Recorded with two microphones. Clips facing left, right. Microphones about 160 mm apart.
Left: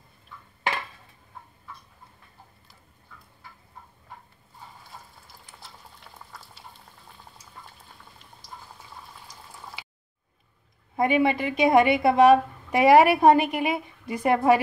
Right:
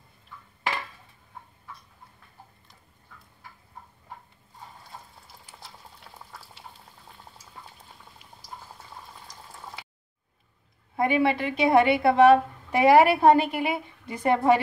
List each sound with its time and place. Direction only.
11.0 s a woman's voice: 20° left (ahead or behind)